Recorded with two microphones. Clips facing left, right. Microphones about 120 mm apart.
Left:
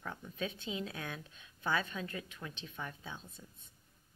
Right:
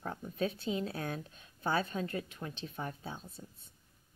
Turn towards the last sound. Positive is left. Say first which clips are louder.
# right 4 dB
turn(degrees=-35)  # may be behind; listen again after turning